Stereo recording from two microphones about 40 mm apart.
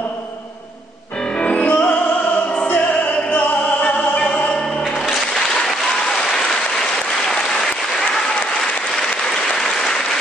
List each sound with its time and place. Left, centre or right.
1.4 s music: left
4.2 s music: left
5.0 s music: centre
5.5 s applause: centre